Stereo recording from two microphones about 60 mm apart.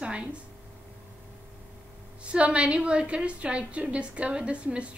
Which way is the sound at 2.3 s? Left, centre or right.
Centre.